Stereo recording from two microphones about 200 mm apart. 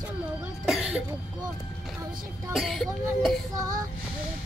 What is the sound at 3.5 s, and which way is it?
Child singing, 15° right (ahead or behind).